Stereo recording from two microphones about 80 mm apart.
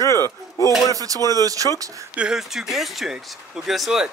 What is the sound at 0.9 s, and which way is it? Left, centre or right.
Speech, right.